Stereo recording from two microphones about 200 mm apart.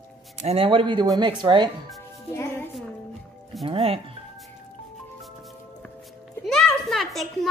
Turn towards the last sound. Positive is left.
turn(degrees=0)  # may be behind; listen again after turning